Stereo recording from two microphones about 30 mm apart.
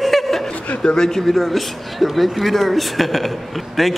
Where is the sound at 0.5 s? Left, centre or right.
Left.